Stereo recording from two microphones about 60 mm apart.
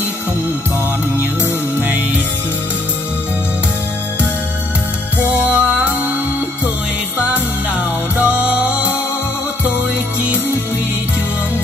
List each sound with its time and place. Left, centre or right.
1.8 s music: right
5.2 s music: right
7.3 s music: right